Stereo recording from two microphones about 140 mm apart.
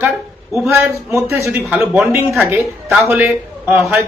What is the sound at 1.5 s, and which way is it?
A man's voice, 10° right (ahead or behind).